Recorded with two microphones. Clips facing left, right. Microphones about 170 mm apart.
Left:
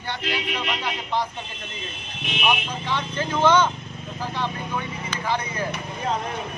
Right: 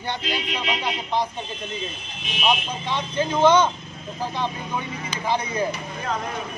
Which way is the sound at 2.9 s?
15° right (ahead or behind).